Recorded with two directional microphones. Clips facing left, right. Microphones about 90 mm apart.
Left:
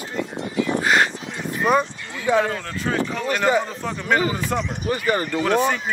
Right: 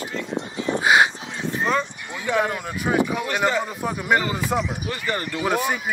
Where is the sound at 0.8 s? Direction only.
15° right (ahead or behind).